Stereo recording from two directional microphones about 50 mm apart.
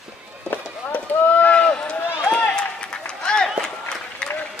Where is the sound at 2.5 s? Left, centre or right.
Centre.